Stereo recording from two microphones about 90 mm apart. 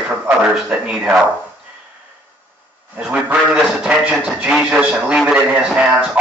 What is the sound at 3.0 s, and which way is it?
Speech, 10° right (ahead or behind).